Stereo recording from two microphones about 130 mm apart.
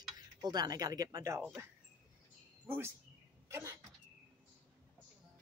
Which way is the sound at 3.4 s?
20° right (ahead or behind).